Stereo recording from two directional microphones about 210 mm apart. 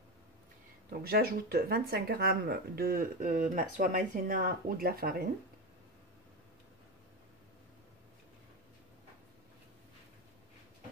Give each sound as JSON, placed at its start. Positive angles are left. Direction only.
{"t": 0.8, "sound": "speech", "side_deg": -45}